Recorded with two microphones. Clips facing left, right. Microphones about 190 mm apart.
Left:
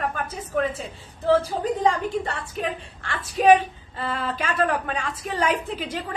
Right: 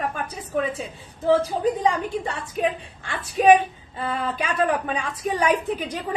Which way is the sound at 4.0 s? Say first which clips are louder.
Right 1 dB; 15° right (ahead or behind).